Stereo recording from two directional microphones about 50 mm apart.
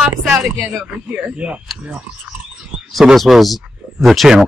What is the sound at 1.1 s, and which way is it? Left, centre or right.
Speech, right.